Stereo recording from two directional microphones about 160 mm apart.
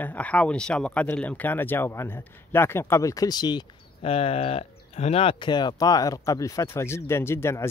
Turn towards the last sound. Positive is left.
turn(degrees=15)  # may be behind; listen again after turning